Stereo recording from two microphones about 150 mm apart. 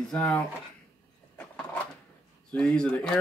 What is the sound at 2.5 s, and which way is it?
Speech, 5° left (ahead or behind).